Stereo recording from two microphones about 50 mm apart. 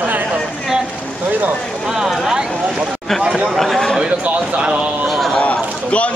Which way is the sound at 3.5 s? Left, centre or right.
Centre.